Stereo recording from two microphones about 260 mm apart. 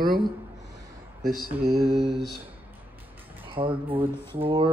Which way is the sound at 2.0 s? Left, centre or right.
Centre.